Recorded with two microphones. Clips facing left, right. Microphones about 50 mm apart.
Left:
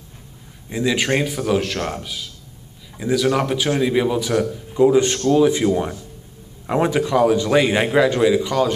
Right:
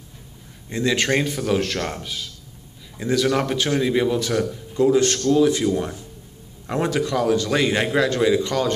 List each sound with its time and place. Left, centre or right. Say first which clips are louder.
0.7 s a man's voice: left 1 dB; centre
6.7 s a man's voice: left 4 dB; centre